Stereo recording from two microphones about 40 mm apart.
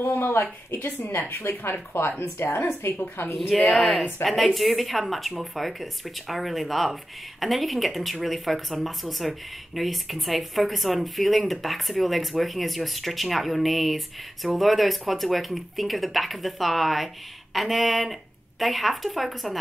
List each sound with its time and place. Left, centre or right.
0.1 s speech: left
0.7 s a woman's voice: left
1.3 s speech: left
3.3 s speech: centre